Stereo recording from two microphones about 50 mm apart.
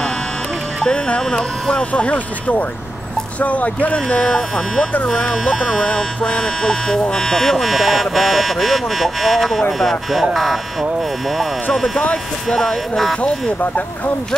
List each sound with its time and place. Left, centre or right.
0.8 s speech: left
4.2 s speech: centre
5.9 s speech: centre
7.5 s speech: centre
13.2 s speech: left